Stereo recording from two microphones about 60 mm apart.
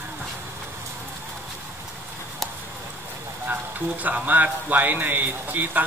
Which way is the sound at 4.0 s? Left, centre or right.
Right.